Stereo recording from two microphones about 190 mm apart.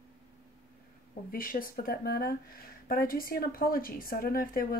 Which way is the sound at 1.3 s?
50° left (ahead or behind).